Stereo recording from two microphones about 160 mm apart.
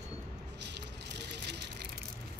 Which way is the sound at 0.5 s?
90° right.